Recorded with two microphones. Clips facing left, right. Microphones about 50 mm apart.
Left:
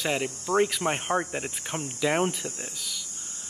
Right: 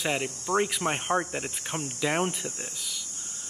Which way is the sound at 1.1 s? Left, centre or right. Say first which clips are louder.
Even; centre.